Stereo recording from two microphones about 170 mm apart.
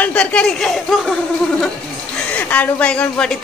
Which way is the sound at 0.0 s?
10° left (ahead or behind).